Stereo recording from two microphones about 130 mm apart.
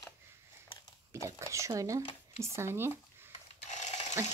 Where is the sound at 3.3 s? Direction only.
60° left (ahead or behind).